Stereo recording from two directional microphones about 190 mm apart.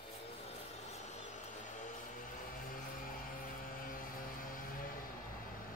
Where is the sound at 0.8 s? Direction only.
35° left (ahead or behind).